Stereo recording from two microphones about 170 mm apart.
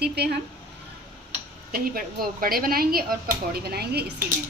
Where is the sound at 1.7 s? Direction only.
60° right (ahead or behind).